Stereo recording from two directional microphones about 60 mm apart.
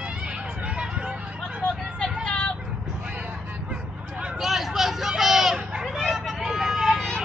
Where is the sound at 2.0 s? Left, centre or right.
Centre.